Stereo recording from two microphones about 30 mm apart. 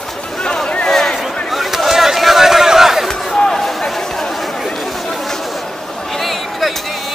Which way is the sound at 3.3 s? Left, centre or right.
Left.